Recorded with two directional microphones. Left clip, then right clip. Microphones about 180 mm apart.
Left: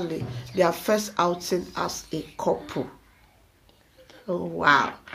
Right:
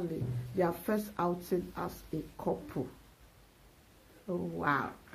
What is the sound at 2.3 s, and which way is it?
Speech, 30° left (ahead or behind).